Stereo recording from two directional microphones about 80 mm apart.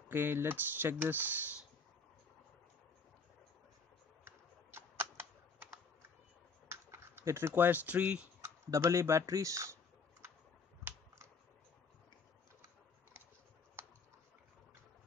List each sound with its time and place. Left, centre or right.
0.1 s speech: right
4.2 s a sound: right
6.7 s speech: right; by 8.3 s centre
8.4 s speech: right
10.8 s finger snapping: right